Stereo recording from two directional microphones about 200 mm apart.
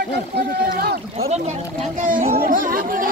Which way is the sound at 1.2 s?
35° right (ahead or behind).